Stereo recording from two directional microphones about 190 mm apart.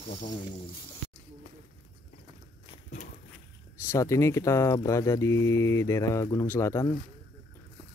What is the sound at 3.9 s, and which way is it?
Speech, 15° left (ahead or behind).